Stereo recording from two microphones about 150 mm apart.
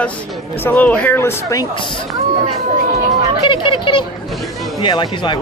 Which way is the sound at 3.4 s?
35° left (ahead or behind).